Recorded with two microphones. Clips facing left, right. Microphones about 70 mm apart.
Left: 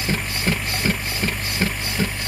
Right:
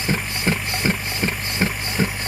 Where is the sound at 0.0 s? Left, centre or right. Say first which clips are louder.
Right 1 dB; centre.